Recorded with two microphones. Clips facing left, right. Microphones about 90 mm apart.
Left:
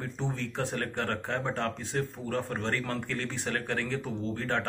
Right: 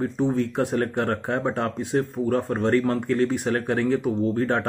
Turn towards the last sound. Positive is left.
turn(degrees=-15)  # may be behind; listen again after turning